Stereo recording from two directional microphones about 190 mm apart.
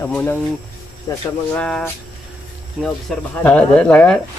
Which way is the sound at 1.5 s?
5° left (ahead or behind).